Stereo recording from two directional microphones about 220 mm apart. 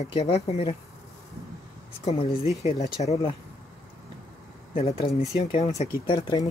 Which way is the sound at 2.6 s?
30° left (ahead or behind).